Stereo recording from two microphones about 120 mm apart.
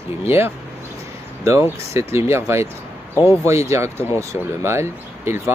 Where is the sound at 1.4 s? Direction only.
25° right (ahead or behind).